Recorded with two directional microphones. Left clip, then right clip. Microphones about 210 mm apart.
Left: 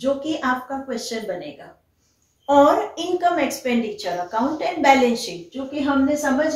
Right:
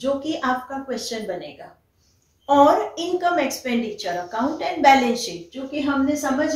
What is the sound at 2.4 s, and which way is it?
A woman's voice, 5° right (ahead or behind).